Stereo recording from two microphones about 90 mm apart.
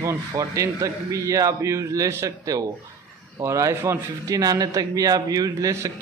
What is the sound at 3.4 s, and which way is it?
A man's voice, 35° right (ahead or behind).